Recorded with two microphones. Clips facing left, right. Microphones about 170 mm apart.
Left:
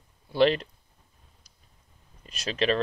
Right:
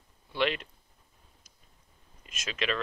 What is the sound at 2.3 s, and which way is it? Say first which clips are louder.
Speech: left 7 dB; 35° left (ahead or behind).